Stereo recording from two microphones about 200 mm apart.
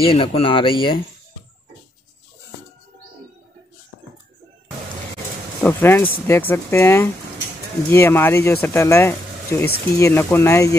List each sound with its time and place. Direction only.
0.0 s speech: 25° left (ahead or behind)
5.6 s speech: 10° left (ahead or behind)